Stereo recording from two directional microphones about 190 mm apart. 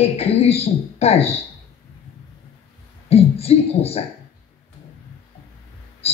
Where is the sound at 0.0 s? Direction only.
30° left (ahead or behind).